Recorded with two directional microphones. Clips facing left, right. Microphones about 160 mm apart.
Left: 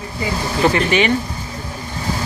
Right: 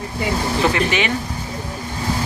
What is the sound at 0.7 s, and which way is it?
Speech, centre (ahead or behind).